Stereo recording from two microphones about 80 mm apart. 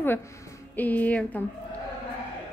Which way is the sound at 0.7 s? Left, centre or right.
Left.